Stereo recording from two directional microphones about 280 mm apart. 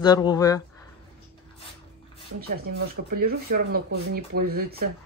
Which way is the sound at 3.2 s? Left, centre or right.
Right.